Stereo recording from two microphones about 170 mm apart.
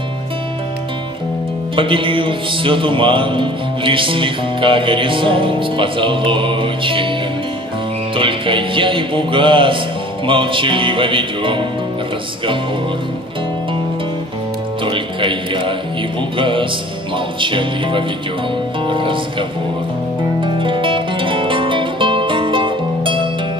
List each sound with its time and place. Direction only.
1.8 s speech: 30° right (ahead or behind)
8.2 s music: 30° right (ahead or behind)
14.9 s a man's voice: 30° right (ahead or behind)
16.2 s music: 30° right (ahead or behind)
20.3 s music: 30° right (ahead or behind)